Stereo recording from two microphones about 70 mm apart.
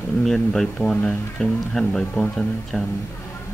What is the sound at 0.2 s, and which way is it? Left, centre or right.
Speech, centre.